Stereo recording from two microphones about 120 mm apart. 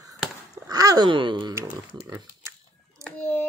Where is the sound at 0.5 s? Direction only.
30° right (ahead or behind).